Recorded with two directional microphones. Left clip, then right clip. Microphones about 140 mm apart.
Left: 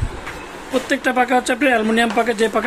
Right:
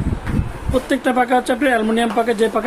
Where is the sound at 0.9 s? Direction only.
15° right (ahead or behind).